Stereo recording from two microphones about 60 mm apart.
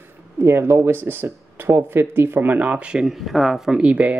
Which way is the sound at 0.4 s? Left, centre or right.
Right.